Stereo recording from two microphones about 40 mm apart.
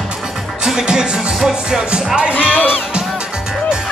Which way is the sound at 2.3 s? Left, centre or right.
Left.